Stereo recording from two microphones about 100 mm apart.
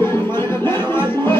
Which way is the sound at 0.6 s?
20° left (ahead or behind).